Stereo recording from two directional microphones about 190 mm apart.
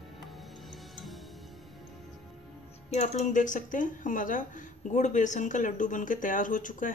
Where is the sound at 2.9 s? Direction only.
35° left (ahead or behind).